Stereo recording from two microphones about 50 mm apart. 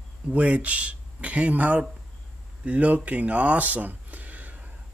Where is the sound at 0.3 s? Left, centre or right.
Right.